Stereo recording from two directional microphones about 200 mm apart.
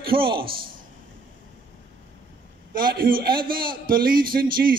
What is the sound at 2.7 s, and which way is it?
A man's voice, 45° right (ahead or behind).